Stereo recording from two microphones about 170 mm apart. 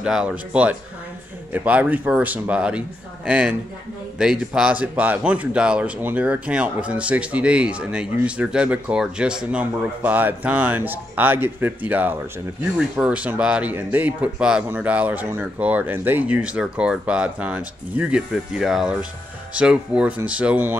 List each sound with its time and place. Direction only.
0.0 s a man's voice: 5° right (ahead or behind)